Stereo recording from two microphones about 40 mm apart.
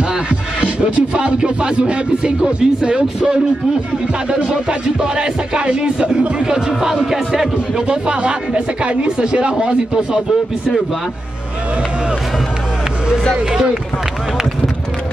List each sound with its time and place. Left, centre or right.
0.3 s speech: right; by 7.8 s centre
7.9 s speech: right